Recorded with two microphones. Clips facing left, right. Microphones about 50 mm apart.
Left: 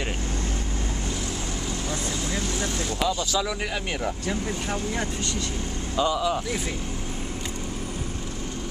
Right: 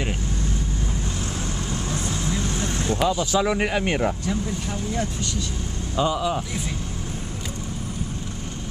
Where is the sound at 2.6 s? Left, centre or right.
Right.